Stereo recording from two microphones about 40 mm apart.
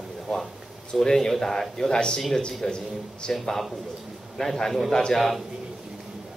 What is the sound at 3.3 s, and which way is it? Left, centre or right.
Speech, centre.